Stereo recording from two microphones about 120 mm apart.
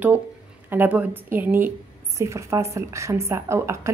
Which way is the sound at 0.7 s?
15° right (ahead or behind).